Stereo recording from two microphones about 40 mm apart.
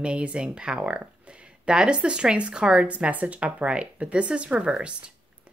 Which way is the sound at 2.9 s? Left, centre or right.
Right.